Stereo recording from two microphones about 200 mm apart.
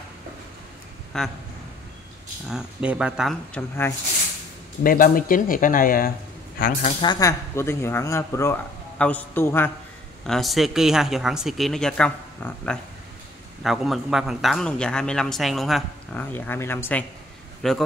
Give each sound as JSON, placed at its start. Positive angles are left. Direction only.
{"t": 1.1, "sound": "a man's voice", "side_deg": 0}
{"t": 2.5, "sound": "a man's voice", "side_deg": -5}
{"t": 3.5, "sound": "speech", "side_deg": 10}
{"t": 4.8, "sound": "speech", "side_deg": 45}
{"t": 7.0, "sound": "a man's voice", "side_deg": 20}